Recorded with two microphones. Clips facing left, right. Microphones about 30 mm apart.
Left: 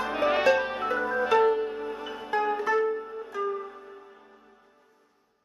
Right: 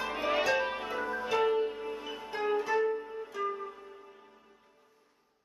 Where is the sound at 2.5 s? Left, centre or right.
Centre.